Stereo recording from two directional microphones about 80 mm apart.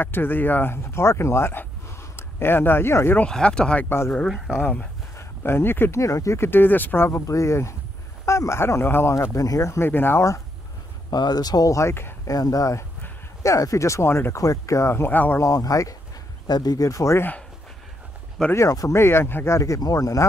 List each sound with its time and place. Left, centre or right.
0.0 s speech: left
3.3 s speech: centre
5.1 s a sound: left
5.9 s speech: left
9.1 s speech: left
11.1 s speech: left
12.3 s speech: left
15.0 s speech: left
15.4 s speech: left
16.4 s speech: left
18.5 s speech: left
18.9 s speech: left